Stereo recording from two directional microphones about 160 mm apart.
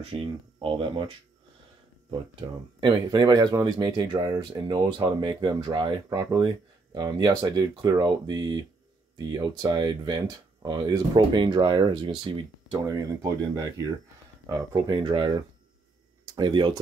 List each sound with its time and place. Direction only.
0.0 s speech: 35° right (ahead or behind)
2.8 s speech: 30° right (ahead or behind)